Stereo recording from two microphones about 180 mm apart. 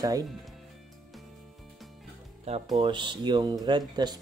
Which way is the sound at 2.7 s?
25° right (ahead or behind).